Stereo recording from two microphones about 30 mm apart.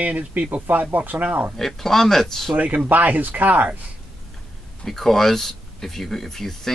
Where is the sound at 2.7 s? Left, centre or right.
Right.